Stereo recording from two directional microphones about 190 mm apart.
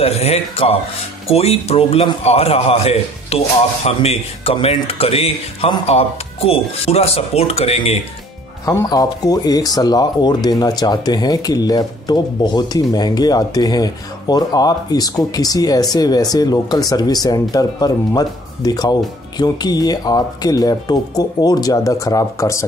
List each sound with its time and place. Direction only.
0.0 s a man's voice: 35° left (ahead or behind)
8.6 s speech: 20° left (ahead or behind)